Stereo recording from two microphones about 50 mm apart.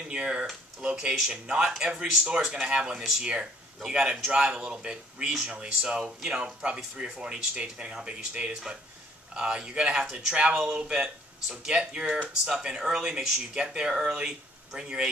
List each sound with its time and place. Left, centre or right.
0.1 s speech: right